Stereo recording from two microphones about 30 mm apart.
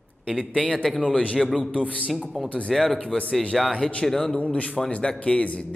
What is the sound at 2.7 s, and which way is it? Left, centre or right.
Speech, centre.